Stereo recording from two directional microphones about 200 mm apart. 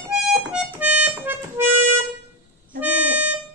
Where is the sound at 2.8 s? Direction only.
5° right (ahead or behind).